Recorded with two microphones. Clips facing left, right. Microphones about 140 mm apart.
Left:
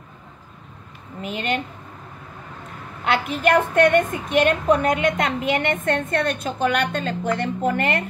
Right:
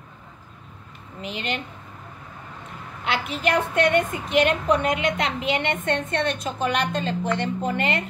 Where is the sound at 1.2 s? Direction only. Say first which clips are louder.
Left 4 dB; 45° left (ahead or behind).